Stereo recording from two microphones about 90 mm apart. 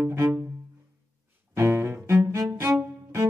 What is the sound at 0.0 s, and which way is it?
Cello, 30° right (ahead or behind).